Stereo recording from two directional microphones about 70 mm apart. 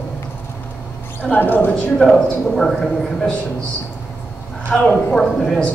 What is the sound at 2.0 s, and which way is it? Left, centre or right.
Speech, centre.